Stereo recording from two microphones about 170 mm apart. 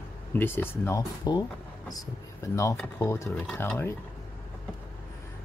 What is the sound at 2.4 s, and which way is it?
Speech, 20° left (ahead or behind).